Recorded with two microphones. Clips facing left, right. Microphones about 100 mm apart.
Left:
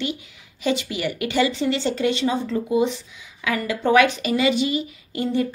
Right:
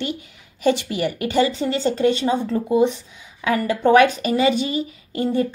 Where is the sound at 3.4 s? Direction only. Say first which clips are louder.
Right 4 dB; 40° right (ahead or behind).